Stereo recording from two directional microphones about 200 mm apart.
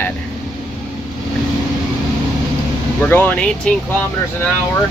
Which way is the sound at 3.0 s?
10° left (ahead or behind).